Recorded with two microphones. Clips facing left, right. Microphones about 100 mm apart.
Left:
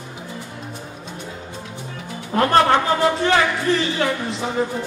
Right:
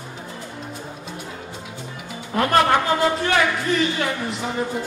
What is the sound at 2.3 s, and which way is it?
A woman's voice, 30° left (ahead or behind).